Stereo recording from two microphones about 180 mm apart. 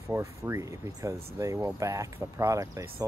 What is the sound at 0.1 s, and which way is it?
Speech, 15° right (ahead or behind).